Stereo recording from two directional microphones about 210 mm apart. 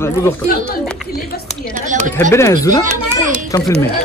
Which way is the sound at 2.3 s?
15° left (ahead or behind).